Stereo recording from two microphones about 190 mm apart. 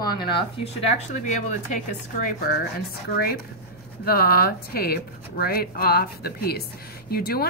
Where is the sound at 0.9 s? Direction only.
40° left (ahead or behind).